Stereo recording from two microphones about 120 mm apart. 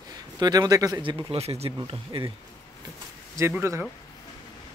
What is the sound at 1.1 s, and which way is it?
Speech, 55° right (ahead or behind).